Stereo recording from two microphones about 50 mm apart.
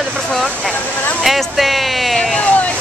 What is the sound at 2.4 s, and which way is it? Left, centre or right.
Speech, left.